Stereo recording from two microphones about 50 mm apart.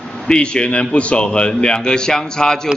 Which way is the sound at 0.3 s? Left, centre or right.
Centre.